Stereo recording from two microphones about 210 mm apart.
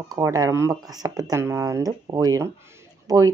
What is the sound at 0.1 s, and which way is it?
Speech, 15° right (ahead or behind).